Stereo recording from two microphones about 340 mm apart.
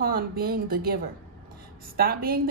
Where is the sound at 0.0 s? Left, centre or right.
Right.